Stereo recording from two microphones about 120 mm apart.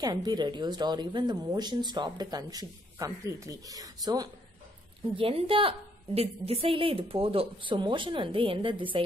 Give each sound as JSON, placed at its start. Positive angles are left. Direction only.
{"t": 0.0, "sound": "speech", "side_deg": -35}
{"t": 5.1, "sound": "a woman's voice", "side_deg": -50}